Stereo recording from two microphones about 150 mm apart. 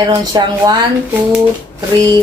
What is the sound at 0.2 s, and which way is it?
Speech, 25° right (ahead or behind).